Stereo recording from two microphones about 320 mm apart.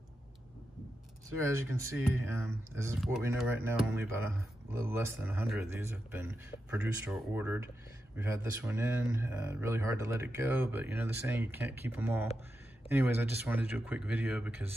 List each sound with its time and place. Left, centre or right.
1.4 s speech: centre